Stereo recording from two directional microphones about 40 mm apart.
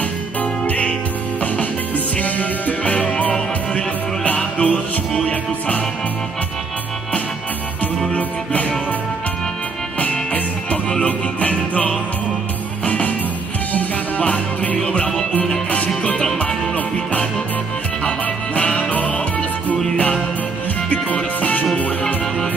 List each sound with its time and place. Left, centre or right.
0.4 s music: left
2.1 s music: left
9.9 s music: left
16.3 s music: left
20.9 s music: left